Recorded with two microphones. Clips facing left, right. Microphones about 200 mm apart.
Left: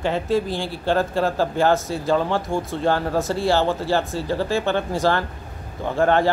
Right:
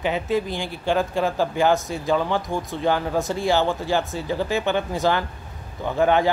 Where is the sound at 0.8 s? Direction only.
Centre (ahead or behind).